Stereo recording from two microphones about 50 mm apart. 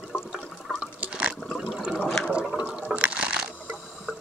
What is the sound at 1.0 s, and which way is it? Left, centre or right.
Liquid, right.